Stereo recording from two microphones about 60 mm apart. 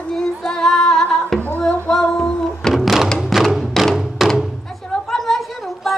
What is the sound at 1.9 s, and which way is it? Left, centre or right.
Music, centre.